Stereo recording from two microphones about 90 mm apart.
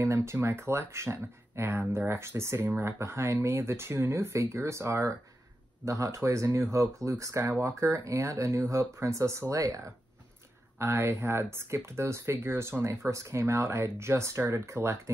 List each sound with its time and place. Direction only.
0.0 s speech: 30° right (ahead or behind)